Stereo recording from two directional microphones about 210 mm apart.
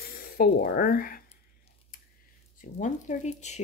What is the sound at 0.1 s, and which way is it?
Speech, 45° left (ahead or behind).